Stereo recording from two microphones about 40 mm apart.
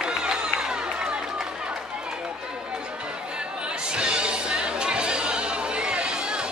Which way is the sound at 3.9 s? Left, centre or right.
Right.